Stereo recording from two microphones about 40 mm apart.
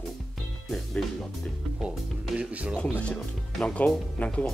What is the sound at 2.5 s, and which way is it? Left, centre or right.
Speech, right.